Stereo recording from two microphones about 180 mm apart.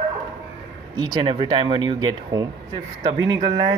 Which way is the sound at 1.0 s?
25° right (ahead or behind).